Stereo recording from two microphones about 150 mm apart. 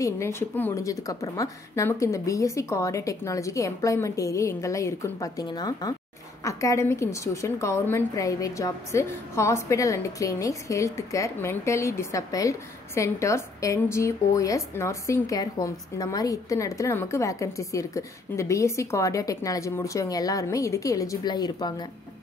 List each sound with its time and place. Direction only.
0.0 s a woman's voice: 15° left (ahead or behind)